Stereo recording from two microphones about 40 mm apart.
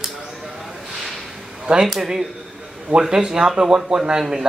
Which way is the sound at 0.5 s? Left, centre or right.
Centre.